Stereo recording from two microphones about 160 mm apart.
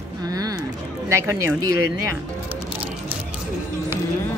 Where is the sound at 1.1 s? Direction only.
15° right (ahead or behind).